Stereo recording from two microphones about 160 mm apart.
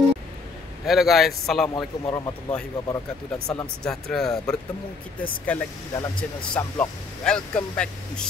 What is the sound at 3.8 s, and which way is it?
Speech, 5° left (ahead or behind).